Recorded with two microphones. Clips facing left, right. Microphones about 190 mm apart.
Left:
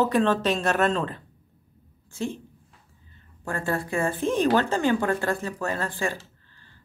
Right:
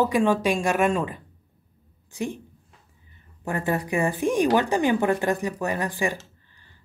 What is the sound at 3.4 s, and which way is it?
Speech, 20° right (ahead or behind).